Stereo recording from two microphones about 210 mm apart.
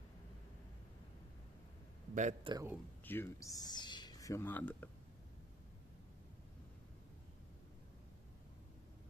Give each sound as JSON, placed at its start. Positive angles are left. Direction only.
{"t": 2.1, "sound": "a man's voice", "side_deg": -35}
{"t": 2.5, "sound": "speech", "side_deg": -10}
{"t": 3.1, "sound": "speech", "side_deg": 10}